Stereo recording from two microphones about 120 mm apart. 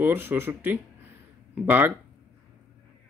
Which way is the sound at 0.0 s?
15° right (ahead or behind).